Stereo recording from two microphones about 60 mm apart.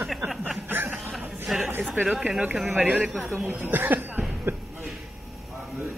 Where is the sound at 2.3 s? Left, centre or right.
Centre.